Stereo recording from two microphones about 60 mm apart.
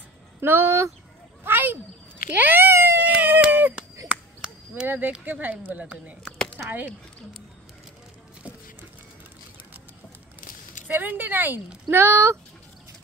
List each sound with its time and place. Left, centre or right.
0.4 s speech: right
1.4 s a sound: right
2.3 s speech: right
3.0 s a sound: right
4.8 s speech: right
11.0 s speech: right
11.9 s speech: right